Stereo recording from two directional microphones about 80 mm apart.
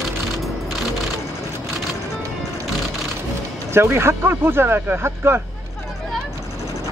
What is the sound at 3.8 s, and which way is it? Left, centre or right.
Speech, right.